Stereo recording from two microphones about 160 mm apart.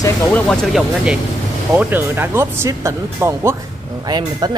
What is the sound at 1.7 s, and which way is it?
Speech, 10° right (ahead or behind).